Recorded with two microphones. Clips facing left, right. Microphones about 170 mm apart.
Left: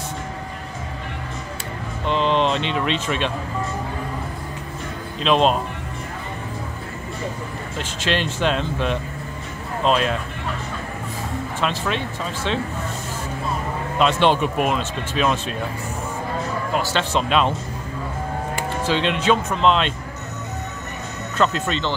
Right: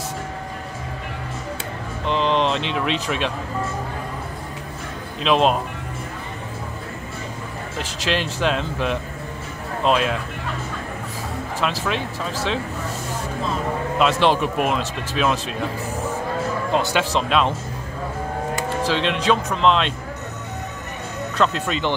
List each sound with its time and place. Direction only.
2.0 s speech: centre (ahead or behind)
5.2 s speech: 5° right (ahead or behind)
7.8 s speech: centre (ahead or behind)
11.6 s speech: centre (ahead or behind)
13.9 s speech: centre (ahead or behind)
16.7 s speech: 20° right (ahead or behind)
17.1 s speech: centre (ahead or behind)
18.9 s speech: centre (ahead or behind)
21.4 s speech: centre (ahead or behind)